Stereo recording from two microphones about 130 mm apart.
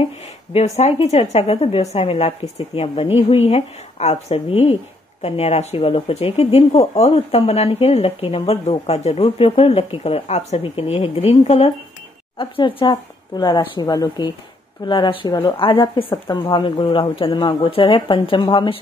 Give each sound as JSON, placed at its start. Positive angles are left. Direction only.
{"t": 0.5, "sound": "speech", "side_deg": 55}
{"t": 12.4, "sound": "speech", "side_deg": 40}